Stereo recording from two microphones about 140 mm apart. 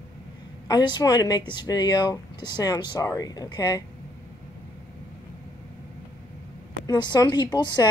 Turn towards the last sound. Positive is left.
turn(degrees=30)  # may be behind; listen again after turning